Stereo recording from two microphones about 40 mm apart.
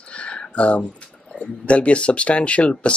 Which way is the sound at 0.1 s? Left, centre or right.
Left.